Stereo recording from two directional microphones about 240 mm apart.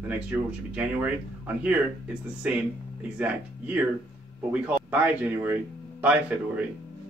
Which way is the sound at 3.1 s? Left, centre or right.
Centre.